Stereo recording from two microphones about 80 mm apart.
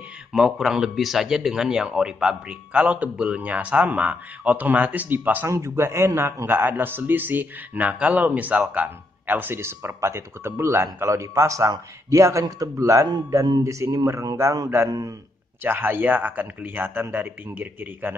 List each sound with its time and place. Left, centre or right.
0.3 s a man's voice: centre; by 5.5 s right
5.5 s a man's voice: right
15.6 s a man's voice: right